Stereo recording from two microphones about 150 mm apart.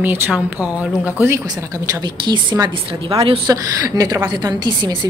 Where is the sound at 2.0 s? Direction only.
30° right (ahead or behind).